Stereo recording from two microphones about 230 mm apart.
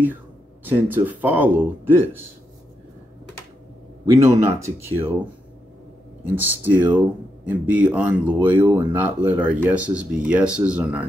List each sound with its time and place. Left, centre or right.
0.7 s speech: centre
4.0 s speech: centre
6.2 s speech: centre